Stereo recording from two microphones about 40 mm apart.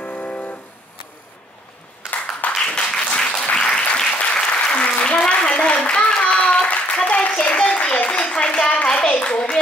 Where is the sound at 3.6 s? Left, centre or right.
Left.